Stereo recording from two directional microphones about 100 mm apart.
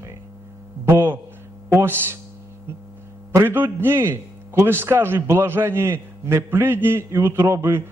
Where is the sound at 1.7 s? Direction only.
20° right (ahead or behind).